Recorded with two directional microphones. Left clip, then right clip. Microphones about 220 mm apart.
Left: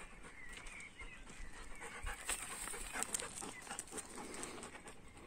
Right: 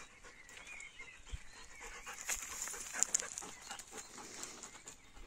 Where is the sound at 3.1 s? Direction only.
45° left (ahead or behind).